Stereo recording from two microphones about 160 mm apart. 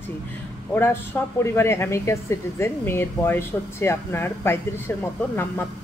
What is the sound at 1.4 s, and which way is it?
Speech, 15° left (ahead or behind).